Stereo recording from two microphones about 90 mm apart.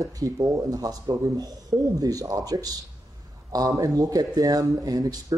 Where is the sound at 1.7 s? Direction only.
25° right (ahead or behind).